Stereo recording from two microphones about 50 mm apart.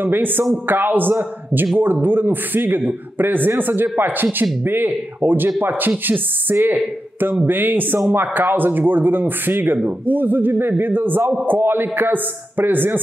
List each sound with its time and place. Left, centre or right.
0.0 s a man's voice: right